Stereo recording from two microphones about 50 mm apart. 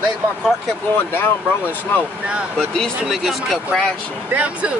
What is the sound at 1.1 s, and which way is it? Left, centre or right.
Speech, left.